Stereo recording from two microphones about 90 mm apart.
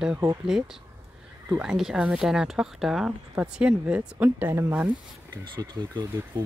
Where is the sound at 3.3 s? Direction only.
15° right (ahead or behind).